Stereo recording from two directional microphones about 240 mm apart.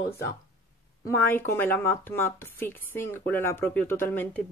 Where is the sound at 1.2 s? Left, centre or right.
Centre.